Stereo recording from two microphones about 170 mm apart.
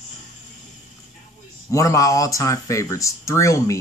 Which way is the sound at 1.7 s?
20° left (ahead or behind).